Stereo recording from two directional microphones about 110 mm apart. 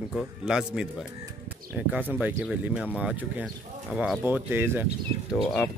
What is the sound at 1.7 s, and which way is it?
A man's voice, 15° right (ahead or behind).